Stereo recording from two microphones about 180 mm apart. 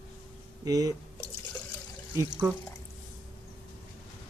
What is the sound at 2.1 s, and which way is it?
Speech, 10° right (ahead or behind).